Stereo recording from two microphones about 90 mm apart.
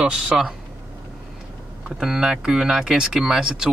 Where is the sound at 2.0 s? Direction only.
5° right (ahead or behind).